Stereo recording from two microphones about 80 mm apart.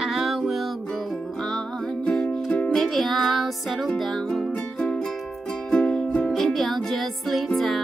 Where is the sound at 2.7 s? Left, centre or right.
Centre.